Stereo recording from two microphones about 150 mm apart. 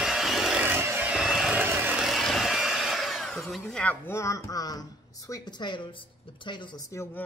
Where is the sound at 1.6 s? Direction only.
15° right (ahead or behind).